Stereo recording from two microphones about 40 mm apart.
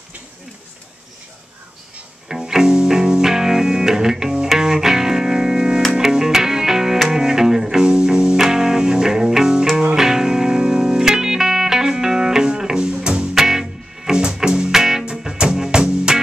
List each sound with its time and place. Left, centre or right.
2.2 s music: centre
13.3 s music: centre